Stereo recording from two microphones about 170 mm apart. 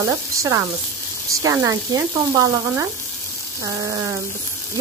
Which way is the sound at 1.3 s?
20° right (ahead or behind).